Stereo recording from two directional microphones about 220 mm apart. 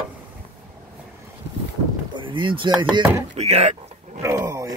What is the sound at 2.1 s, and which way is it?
Speech, 20° right (ahead or behind).